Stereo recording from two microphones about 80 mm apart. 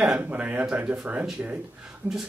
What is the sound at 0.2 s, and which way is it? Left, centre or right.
Speech, right.